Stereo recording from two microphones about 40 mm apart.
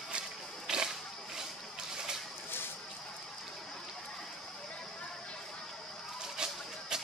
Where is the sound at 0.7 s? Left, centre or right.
Centre.